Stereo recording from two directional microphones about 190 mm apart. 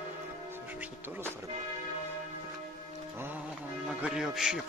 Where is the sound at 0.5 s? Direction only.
10° right (ahead or behind).